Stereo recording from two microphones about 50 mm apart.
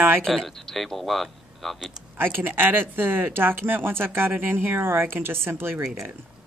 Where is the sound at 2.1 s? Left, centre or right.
Right.